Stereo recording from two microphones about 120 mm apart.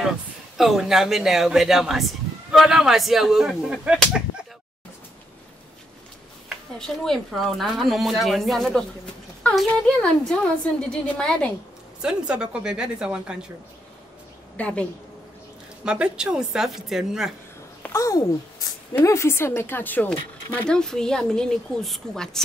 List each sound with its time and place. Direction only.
0.6 s speech: centre (ahead or behind)
7.1 s a woman's voice: centre (ahead or behind)
12.0 s a woman's voice: 5° right (ahead or behind)
14.6 s a woman's voice: 10° left (ahead or behind)
15.8 s speech: 5° right (ahead or behind)
17.8 s a woman's voice: 25° left (ahead or behind); by 22.4 s 5° left (ahead or behind)